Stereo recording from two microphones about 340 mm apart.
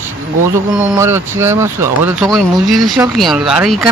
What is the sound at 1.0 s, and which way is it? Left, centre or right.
Speech, centre.